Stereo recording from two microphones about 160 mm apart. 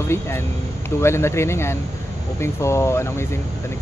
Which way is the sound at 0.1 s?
15° left (ahead or behind).